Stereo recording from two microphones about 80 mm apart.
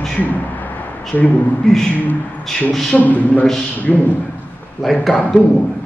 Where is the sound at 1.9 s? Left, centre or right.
Centre.